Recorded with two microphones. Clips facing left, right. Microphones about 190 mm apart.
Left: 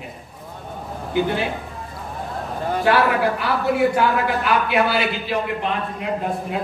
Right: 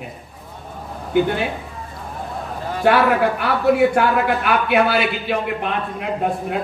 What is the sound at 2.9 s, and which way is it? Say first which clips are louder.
Speech: right 2 dB; centre (ahead or behind).